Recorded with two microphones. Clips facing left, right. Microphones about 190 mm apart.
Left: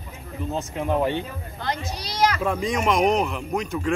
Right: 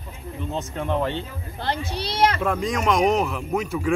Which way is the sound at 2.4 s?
Centre (ahead or behind).